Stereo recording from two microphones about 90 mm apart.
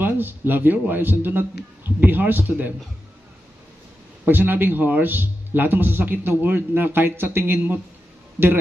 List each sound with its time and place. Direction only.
0.0 s speech: 20° right (ahead or behind)
4.3 s speech: 20° right (ahead or behind)